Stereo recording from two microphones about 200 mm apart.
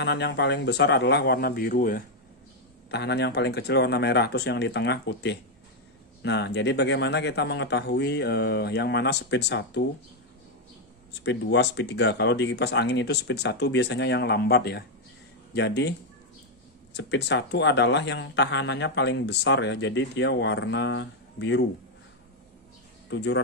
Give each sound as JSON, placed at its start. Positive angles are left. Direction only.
{"t": 0.0, "sound": "speech", "side_deg": 60}
{"t": 2.9, "sound": "speech", "side_deg": 55}
{"t": 11.1, "sound": "speech", "side_deg": 60}
{"t": 16.9, "sound": "speech", "side_deg": 60}
{"t": 23.0, "sound": "speech", "side_deg": 65}